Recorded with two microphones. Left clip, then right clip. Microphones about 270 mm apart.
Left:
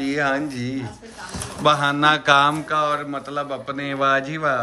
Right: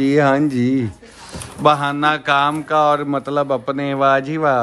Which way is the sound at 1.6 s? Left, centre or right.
Centre.